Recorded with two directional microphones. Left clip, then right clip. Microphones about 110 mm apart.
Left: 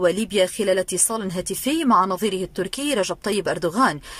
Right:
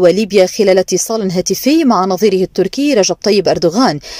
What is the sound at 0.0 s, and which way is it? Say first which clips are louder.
Speech: right 10 dB; 35° right (ahead or behind).